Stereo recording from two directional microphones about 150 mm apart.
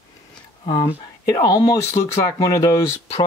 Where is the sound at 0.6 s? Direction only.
35° left (ahead or behind).